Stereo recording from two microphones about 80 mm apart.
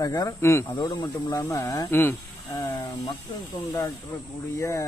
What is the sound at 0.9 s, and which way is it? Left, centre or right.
Speech, left.